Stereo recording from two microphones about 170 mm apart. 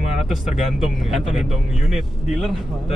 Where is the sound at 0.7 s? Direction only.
5° right (ahead or behind).